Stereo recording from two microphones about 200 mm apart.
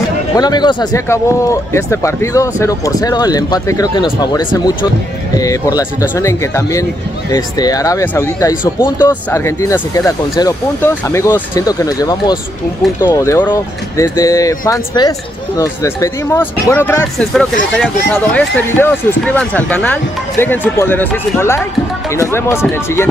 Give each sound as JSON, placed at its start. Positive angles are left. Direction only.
{"t": 0.4, "sound": "speech", "side_deg": 20}